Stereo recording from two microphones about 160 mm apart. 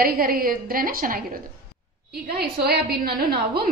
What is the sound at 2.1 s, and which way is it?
A woman's voice, 80° right.